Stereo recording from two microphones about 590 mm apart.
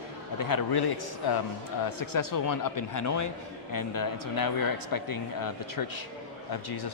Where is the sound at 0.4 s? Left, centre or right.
Left.